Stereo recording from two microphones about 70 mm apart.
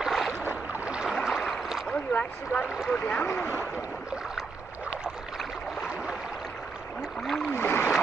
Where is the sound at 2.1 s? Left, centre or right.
Left.